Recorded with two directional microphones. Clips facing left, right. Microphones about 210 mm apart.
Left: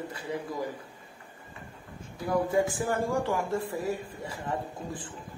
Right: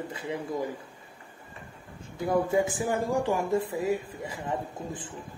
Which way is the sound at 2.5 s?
20° right (ahead or behind).